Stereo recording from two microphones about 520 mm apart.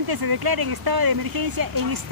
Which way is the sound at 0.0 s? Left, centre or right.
Right.